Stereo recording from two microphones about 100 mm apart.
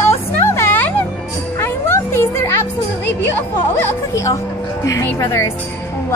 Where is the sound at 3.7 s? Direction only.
25° left (ahead or behind).